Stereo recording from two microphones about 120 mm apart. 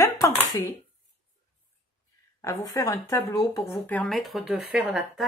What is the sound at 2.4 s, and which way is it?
Speech, 30° left (ahead or behind).